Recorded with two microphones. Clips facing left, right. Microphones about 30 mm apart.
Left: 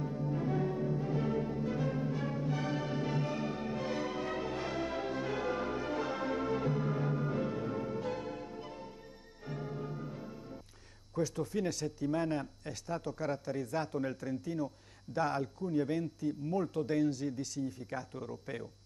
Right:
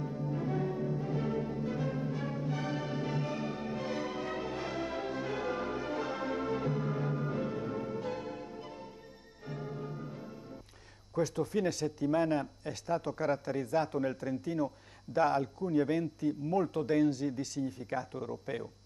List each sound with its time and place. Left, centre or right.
0.0 s music: centre
11.1 s speech: right
13.9 s speech: centre
14.4 s speech: right